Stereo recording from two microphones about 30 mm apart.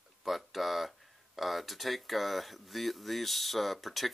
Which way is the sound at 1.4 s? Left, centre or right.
Centre.